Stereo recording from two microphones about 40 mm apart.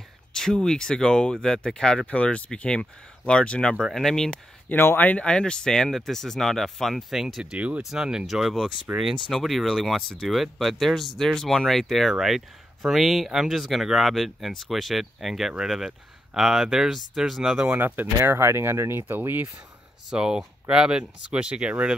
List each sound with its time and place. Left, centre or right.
0.3 s speech: centre
2.0 s speech: left
3.8 s speech: centre
4.7 s speech: left
5.1 s speech: left; by 7.1 s centre
7.1 s speech: centre
7.5 s speech: right
7.9 s speech: centre
8.9 s speech: right
9.3 s speech: centre
17.6 s speech: right
20.1 s speech: centre